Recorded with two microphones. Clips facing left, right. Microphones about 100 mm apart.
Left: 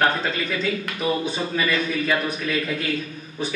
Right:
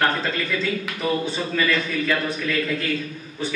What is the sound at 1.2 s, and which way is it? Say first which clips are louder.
Speech: right 1 dB; 15° left (ahead or behind).